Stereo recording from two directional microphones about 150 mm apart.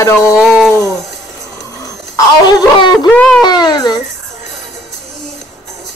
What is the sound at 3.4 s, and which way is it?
Speech, 25° left (ahead or behind).